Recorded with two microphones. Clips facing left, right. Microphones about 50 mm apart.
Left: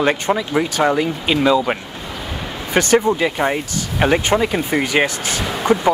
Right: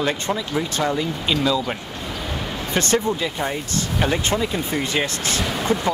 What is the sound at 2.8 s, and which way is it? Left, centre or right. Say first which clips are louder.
Speech: left 6 dB; centre.